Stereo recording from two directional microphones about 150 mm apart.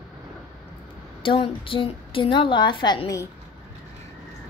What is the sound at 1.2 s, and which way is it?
A woman's voice, 35° left (ahead or behind).